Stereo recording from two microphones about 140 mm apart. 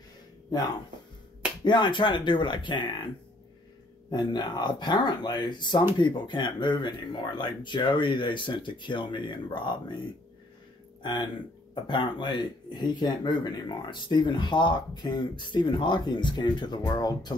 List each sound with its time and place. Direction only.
1.6 s speech: 35° left (ahead or behind)
4.1 s speech: 30° left (ahead or behind)
11.0 s speech: 35° left (ahead or behind)